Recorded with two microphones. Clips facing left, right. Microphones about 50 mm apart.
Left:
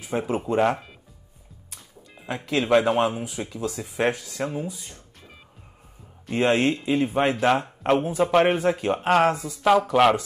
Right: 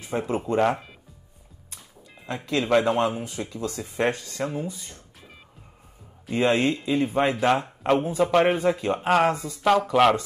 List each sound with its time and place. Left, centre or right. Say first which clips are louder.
0.0 s speech: left 1 dB; centre
2.2 s speech: left 1 dB; left
2.7 s speech: left 1 dB; centre
6.5 s speech: left 1 dB; centre